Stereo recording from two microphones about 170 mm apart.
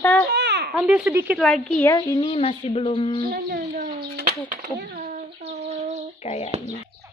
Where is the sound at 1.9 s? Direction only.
25° left (ahead or behind).